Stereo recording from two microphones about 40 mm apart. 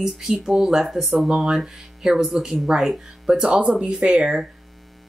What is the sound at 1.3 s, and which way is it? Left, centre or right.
Speech, centre.